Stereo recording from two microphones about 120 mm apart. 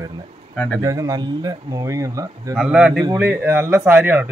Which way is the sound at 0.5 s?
5° left (ahead or behind).